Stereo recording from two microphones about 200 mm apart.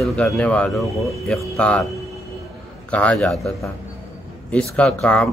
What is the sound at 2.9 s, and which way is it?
Speech, 5° left (ahead or behind).